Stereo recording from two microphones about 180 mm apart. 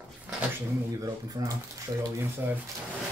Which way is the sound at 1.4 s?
20° right (ahead or behind).